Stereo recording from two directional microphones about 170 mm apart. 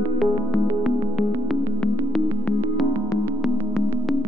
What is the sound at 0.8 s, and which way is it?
Music, centre (ahead or behind).